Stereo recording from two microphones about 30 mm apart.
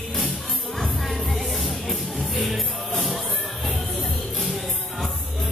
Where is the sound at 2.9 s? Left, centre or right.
Centre.